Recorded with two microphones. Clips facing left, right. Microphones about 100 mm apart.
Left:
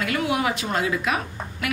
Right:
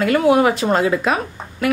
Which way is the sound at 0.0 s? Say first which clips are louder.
Right 10 dB; 40° right (ahead or behind).